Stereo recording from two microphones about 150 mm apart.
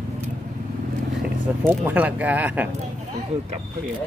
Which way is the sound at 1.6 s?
10° right (ahead or behind).